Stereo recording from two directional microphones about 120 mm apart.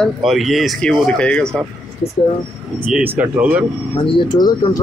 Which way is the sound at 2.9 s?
15° right (ahead or behind).